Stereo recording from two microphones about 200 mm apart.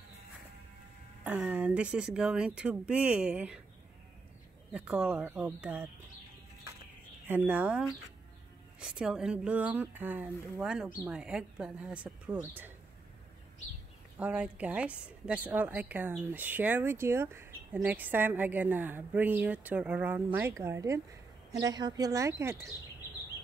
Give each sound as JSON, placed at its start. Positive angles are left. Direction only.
{"t": 1.2, "sound": "speech", "side_deg": -5}
{"t": 4.7, "sound": "a woman's voice", "side_deg": -5}
{"t": 7.2, "sound": "a woman's voice", "side_deg": -10}
{"t": 14.1, "sound": "a woman's voice", "side_deg": -5}